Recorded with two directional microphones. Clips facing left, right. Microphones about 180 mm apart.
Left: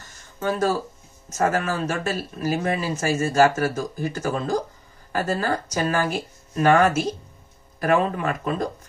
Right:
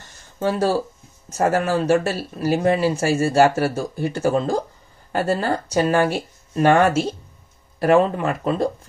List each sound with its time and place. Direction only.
0.4 s speech: 30° right (ahead or behind)